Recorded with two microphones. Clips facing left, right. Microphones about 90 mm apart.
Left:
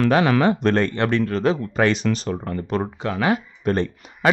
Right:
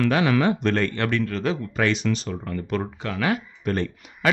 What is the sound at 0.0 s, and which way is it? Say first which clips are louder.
Speech: left 3 dB; 40° left (ahead or behind).